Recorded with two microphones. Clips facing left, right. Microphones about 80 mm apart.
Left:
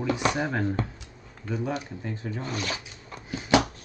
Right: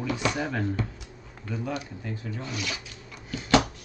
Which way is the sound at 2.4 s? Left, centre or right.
Left.